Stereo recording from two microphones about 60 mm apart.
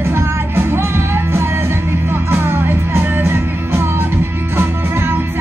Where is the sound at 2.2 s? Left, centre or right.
Right.